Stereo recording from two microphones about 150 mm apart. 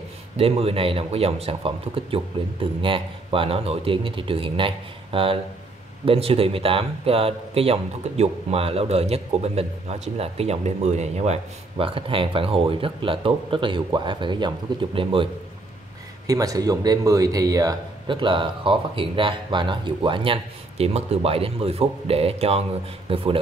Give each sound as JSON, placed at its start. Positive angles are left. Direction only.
{"t": 0.4, "sound": "a man's voice", "side_deg": -40}
{"t": 11.8, "sound": "a man's voice", "side_deg": -35}
{"t": 16.3, "sound": "a man's voice", "side_deg": -25}